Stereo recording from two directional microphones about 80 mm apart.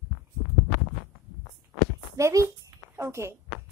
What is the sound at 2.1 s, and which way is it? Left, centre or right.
A child's voice, right.